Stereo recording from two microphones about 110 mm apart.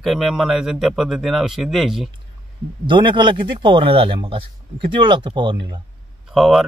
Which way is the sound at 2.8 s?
45° right (ahead or behind).